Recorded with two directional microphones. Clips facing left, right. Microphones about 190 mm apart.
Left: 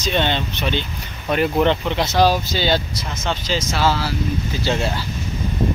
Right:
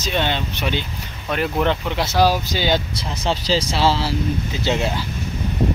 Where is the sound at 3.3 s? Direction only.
35° right (ahead or behind); by 5.0 s 15° right (ahead or behind).